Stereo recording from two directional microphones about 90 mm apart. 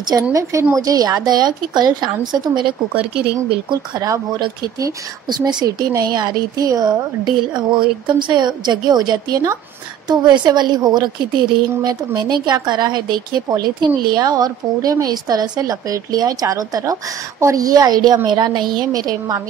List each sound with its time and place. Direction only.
0.2 s a woman's voice: 35° right (ahead or behind); by 3.0 s 60° right (ahead or behind)
5.3 s a woman's voice: 50° right (ahead or behind)